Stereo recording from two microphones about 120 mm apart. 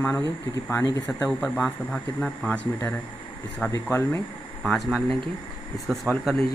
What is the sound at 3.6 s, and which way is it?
Speech, 20° left (ahead or behind).